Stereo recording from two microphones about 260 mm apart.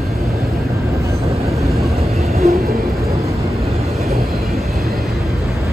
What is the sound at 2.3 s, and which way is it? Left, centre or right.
Train, right.